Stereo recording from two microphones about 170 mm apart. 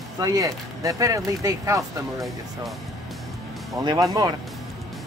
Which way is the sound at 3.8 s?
25° right (ahead or behind).